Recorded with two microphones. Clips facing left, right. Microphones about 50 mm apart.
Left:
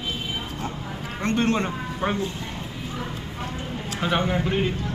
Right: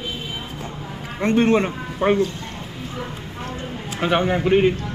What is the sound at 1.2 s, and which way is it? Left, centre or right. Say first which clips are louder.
Speech: right 6 dB; centre.